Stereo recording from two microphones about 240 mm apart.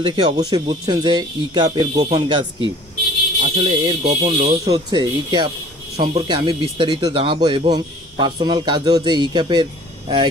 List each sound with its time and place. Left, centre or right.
0.0 s speech: centre
4.6 s speech: centre